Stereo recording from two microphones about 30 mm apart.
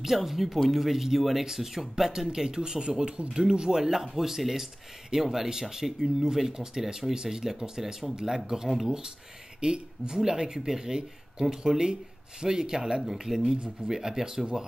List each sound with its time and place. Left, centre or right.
0.0 s speech: centre; by 3.8 s right
3.8 s speech: centre
9.6 s speech: right